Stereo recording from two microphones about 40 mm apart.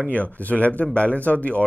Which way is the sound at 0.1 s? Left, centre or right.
Left.